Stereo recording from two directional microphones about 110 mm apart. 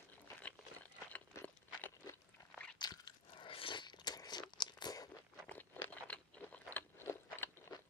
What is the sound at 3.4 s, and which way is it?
Crunch, 55° left (ahead or behind).